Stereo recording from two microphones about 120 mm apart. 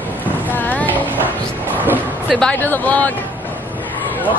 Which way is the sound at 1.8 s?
15° right (ahead or behind).